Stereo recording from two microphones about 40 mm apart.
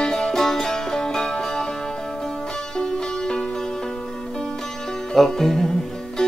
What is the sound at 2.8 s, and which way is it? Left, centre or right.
Music, centre.